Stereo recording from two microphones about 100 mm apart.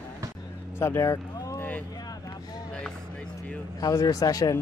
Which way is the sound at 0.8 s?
30° left (ahead or behind).